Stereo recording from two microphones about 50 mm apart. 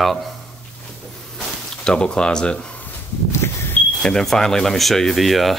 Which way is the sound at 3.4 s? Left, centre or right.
Left.